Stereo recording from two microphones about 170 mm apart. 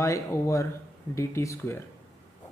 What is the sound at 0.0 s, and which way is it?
Speech, 15° left (ahead or behind).